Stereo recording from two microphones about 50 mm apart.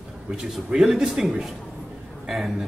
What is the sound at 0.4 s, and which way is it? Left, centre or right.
A man's voice, centre.